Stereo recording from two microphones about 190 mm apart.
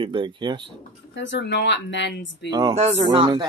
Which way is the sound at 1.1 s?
70° left (ahead or behind).